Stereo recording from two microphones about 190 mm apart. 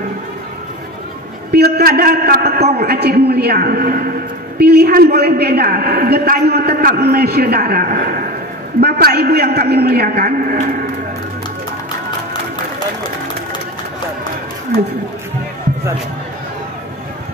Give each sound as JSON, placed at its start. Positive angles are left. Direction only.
{"t": 1.5, "sound": "a woman's voice", "side_deg": -55}